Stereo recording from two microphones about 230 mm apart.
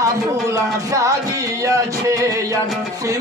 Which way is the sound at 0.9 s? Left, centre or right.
Centre.